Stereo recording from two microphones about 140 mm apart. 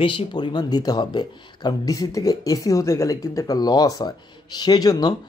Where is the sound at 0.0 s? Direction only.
40° left (ahead or behind).